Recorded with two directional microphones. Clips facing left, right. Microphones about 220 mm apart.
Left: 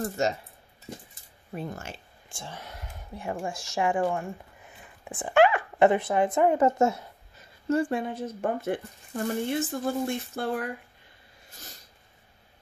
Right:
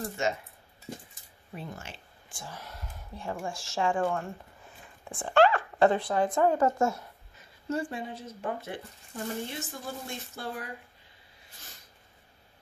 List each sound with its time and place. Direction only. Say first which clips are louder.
0.2 s speech: left 3 dB; 40° left (ahead or behind)
1.5 s speech: left 5 dB; 50° left (ahead or behind)
2.2 s a sound: left 2 dB; 25° left (ahead or behind)
3.4 s speech: left 2 dB; 20° left (ahead or behind)
7.7 s speech: left 7 dB; 55° left (ahead or behind)